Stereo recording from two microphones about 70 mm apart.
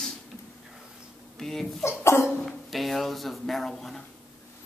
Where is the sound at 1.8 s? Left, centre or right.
Left.